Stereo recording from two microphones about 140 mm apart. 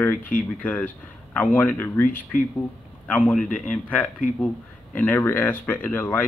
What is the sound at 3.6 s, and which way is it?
Speech, 10° left (ahead or behind).